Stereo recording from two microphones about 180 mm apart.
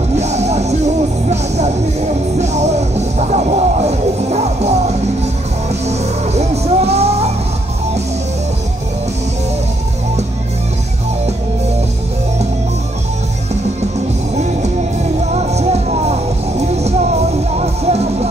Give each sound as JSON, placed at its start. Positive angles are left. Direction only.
{"t": 0.2, "sound": "music", "side_deg": -40}
{"t": 15.3, "sound": "music", "side_deg": -35}